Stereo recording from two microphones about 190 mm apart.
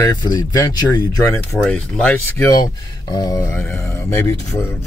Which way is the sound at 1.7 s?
10° left (ahead or behind).